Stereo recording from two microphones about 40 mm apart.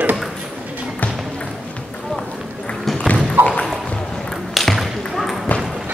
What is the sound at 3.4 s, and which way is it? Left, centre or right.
Ping, right.